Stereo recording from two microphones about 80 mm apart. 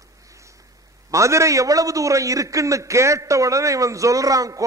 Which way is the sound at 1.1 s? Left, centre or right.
Right.